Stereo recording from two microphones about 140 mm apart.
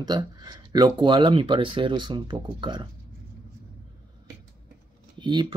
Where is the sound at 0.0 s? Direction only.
30° right (ahead or behind).